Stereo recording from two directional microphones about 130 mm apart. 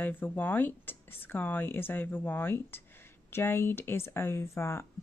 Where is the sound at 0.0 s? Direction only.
15° left (ahead or behind).